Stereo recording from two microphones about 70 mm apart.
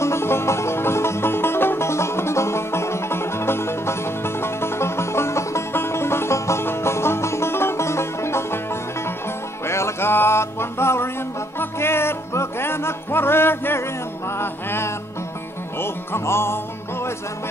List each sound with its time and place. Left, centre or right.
0.0 s music: left